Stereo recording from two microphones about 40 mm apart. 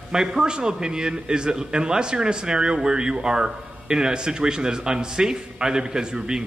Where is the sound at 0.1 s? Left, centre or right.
Centre.